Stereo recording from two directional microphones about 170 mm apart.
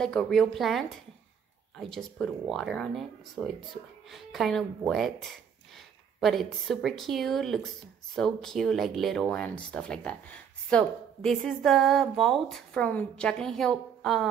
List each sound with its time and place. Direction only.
0.0 s speech: 5° left (ahead or behind)